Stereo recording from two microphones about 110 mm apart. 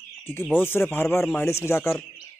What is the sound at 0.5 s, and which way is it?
Speech, 20° left (ahead or behind).